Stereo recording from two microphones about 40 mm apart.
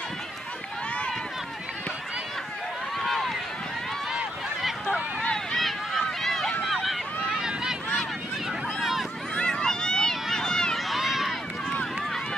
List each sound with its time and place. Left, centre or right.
3.0 s run: centre
5.6 s run: centre
6.6 s vehicle: centre
7.2 s a sound: centre
9.3 s a sound: centre
10.9 s run: centre